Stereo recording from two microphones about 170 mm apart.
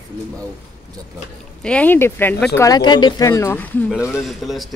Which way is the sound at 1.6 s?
5° left (ahead or behind).